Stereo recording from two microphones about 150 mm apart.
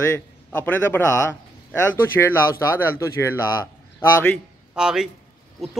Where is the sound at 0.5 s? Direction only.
10° left (ahead or behind).